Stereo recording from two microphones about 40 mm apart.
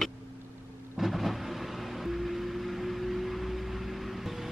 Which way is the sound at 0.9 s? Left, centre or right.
Centre.